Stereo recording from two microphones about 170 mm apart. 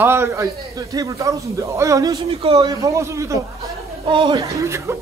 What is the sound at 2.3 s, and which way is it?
A man's voice, 35° right (ahead or behind).